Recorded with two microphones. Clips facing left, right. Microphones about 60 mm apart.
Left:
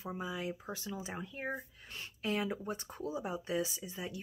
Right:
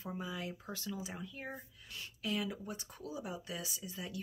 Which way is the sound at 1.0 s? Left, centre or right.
Left.